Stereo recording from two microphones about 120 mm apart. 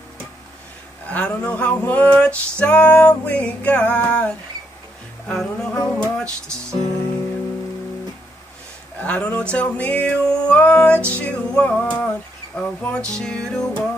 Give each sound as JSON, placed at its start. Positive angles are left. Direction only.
{"t": 1.0, "sound": "music", "side_deg": 10}
{"t": 5.3, "sound": "music", "side_deg": 5}
{"t": 6.2, "sound": "music", "side_deg": -25}
{"t": 9.0, "sound": "music", "side_deg": 10}